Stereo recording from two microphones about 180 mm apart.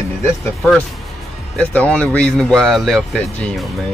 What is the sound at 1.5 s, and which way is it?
Speech, 10° left (ahead or behind).